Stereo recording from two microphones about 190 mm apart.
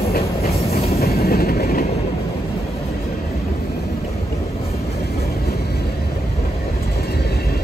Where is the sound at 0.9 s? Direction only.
55° left (ahead or behind).